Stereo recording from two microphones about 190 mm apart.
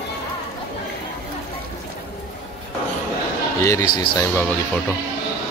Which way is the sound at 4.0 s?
15° left (ahead or behind).